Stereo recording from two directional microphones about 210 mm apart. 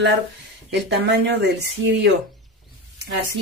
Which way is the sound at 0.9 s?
55° right (ahead or behind).